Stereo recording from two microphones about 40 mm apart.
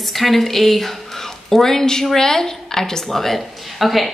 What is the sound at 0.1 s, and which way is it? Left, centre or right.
A woman's voice, centre.